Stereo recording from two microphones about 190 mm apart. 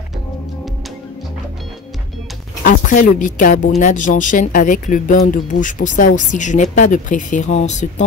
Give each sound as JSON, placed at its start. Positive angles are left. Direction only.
{"t": 2.6, "sound": "speech", "side_deg": 45}